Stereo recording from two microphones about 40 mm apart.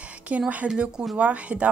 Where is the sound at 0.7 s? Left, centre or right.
Right.